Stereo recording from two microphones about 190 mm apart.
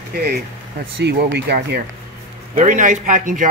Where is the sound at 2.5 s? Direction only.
45° right (ahead or behind).